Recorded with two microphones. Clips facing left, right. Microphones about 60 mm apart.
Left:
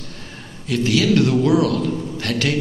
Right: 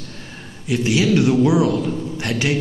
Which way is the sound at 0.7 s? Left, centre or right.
Centre.